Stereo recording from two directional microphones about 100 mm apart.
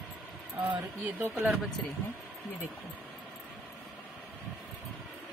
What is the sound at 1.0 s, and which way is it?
Speech, 20° right (ahead or behind).